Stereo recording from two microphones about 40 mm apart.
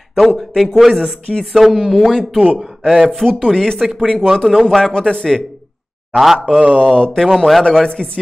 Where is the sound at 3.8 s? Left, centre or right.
Centre.